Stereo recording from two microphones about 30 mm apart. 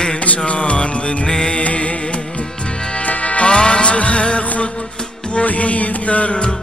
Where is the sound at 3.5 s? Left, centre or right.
Left.